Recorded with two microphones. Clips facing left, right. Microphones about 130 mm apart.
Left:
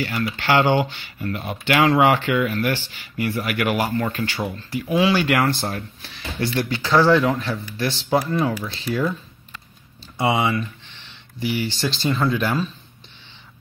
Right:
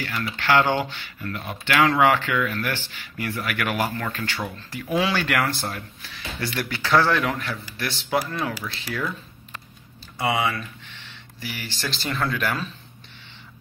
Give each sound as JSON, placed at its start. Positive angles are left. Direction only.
{"t": 0.1, "sound": "speech", "side_deg": 20}
{"t": 5.1, "sound": "speech", "side_deg": 20}
{"t": 10.1, "sound": "speech", "side_deg": 25}